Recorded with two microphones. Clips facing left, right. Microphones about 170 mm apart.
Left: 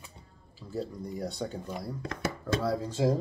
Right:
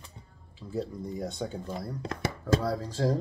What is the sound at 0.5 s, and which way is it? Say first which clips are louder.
Speech: right 2 dB; centre (ahead or behind).